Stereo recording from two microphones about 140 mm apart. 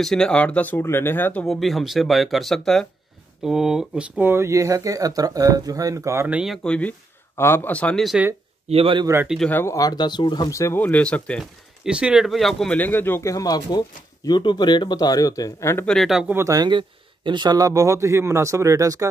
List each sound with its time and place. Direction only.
0.0 s speech: 5° left (ahead or behind)
1.4 s speech: centre (ahead or behind)
4.3 s speech: 20° right (ahead or behind)
6.2 s speech: 5° right (ahead or behind)
8.6 s a man's voice: 40° right (ahead or behind)
9.0 s speech: 20° right (ahead or behind)
9.5 s speech: 20° left (ahead or behind)
11.8 s speech: 5° right (ahead or behind); by 15.9 s 20° left (ahead or behind)
15.9 s speech: centre (ahead or behind)
16.3 s speech: 25° right (ahead or behind)